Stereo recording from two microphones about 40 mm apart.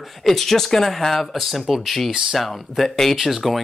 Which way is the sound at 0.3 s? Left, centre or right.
Centre.